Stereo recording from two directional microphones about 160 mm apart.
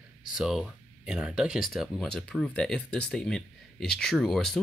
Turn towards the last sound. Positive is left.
turn(degrees=0)  # may be behind; listen again after turning